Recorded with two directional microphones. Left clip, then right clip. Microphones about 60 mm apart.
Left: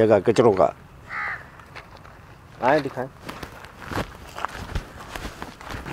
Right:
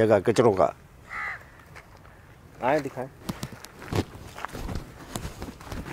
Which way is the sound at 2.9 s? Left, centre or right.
Right.